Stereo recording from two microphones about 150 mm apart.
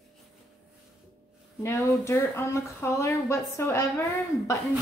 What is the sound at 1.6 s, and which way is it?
A woman's voice, 20° left (ahead or behind).